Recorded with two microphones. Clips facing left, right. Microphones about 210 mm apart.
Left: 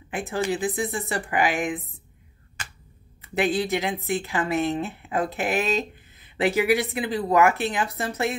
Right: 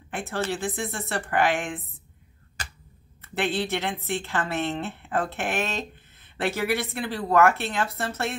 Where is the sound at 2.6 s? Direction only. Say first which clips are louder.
Right 1 dB; 35° right (ahead or behind).